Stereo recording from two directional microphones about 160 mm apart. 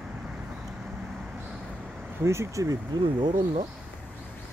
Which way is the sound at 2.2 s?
15° right (ahead or behind).